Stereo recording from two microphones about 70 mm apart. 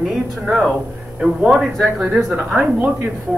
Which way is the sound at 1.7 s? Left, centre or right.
Centre.